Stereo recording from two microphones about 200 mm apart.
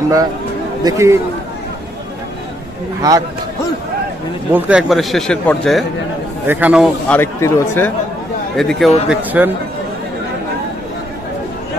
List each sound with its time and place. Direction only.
0.8 s a man's voice: 15° right (ahead or behind)
3.0 s speech: 20° right (ahead or behind)
4.5 s a man's voice: 10° right (ahead or behind)
6.4 s a man's voice: 10° right (ahead or behind)
7.1 s speech: 15° left (ahead or behind)
8.5 s a man's voice: centre (ahead or behind)